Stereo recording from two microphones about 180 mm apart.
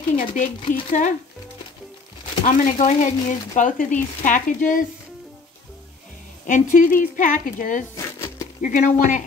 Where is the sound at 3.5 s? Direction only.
45° left (ahead or behind).